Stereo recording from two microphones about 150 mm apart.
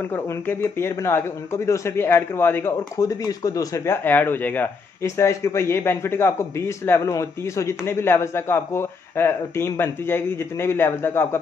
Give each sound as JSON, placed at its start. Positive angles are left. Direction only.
{"t": 0.1, "sound": "a man's voice", "side_deg": 15}